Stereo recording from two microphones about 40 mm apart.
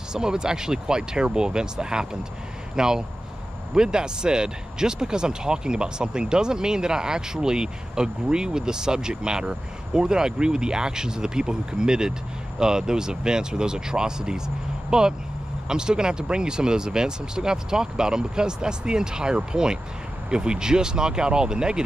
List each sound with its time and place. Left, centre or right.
0.1 s speech: centre